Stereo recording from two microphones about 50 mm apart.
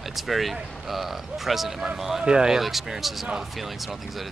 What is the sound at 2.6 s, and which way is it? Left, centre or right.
Speech, centre.